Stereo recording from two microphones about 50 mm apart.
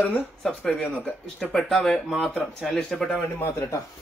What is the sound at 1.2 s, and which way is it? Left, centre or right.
A man's voice, centre.